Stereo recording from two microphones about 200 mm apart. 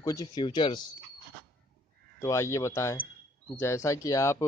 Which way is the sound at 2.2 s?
15° left (ahead or behind).